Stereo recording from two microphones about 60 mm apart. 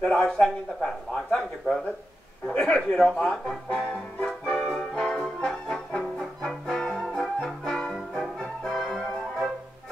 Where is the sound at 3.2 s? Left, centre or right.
Centre.